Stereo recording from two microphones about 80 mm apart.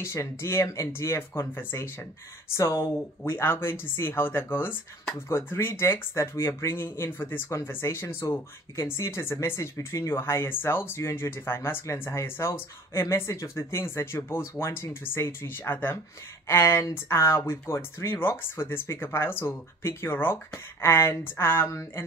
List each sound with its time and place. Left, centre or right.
0.0 s speech: left